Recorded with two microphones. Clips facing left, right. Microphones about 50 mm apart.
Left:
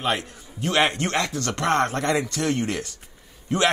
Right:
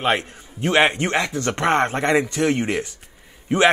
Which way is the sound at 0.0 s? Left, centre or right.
Right.